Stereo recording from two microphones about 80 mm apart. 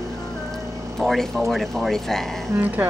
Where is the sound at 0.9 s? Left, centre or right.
Centre.